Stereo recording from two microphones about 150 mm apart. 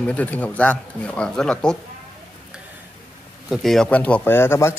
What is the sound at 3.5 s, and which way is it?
Speech, centre (ahead or behind).